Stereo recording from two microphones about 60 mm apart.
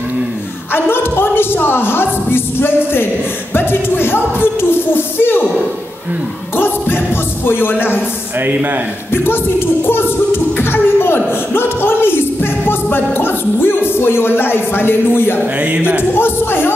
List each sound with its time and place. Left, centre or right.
0.8 s a woman's voice: left
6.5 s a woman's voice: left
9.1 s a woman's voice: left
10.6 s a sound: left
15.6 s speech: right
16.0 s a woman's voice: left